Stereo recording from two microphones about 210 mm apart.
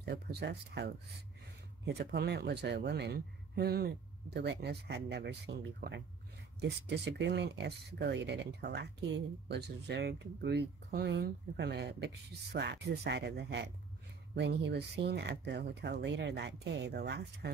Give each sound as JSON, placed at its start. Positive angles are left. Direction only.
{"t": 0.0, "sound": "speech", "side_deg": -55}